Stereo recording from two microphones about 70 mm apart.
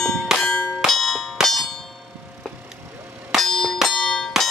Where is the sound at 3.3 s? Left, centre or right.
Centre.